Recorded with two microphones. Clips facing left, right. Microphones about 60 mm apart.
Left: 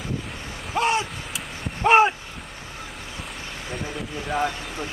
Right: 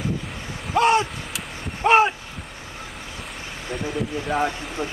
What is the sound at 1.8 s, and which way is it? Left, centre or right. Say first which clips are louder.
Vehicle: even; centre.